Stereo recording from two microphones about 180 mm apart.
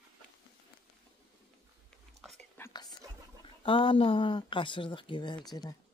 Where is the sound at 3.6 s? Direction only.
30° left (ahead or behind).